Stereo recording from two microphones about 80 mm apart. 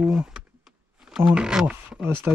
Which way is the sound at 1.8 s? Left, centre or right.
Right.